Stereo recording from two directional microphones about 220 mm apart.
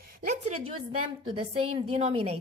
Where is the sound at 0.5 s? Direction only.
75° right (ahead or behind).